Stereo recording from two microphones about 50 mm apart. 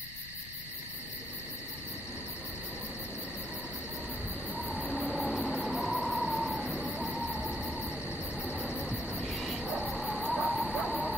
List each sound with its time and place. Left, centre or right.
4.5 s train: centre
9.7 s music: centre
9.9 s cricket: centre